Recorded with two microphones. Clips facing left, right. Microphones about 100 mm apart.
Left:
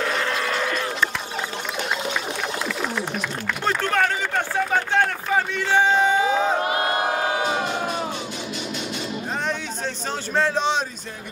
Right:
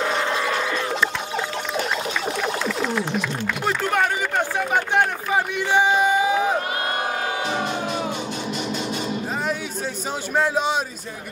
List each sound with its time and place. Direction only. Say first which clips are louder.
0.0 s mechanisms: right 2 dB; 20° right (ahead or behind)
3.6 s run: even; 10° right (ahead or behind)
10.3 s a sound: even; 10° right (ahead or behind)